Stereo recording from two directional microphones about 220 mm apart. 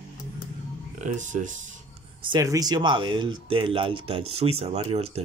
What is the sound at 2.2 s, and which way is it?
Speech, 20° right (ahead or behind).